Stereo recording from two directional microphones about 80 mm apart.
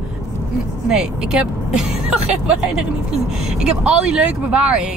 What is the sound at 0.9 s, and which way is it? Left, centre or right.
Speech, centre.